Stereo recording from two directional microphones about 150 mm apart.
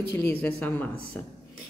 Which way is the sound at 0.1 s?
15° left (ahead or behind).